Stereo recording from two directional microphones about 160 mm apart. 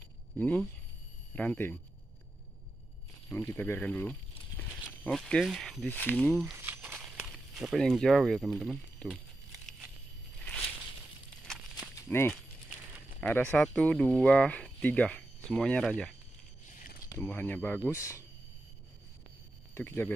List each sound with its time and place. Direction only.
0.4 s speech: 10° left (ahead or behind)
3.3 s speech: 15° left (ahead or behind)
6.5 s a sound: 10° right (ahead or behind)
11.9 s a sound: 15° left (ahead or behind)
13.2 s speech: 10° left (ahead or behind)
19.7 s speech: 15° left (ahead or behind)